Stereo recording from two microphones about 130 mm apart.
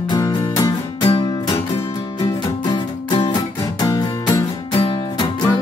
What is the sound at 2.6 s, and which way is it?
Music, 35° left (ahead or behind).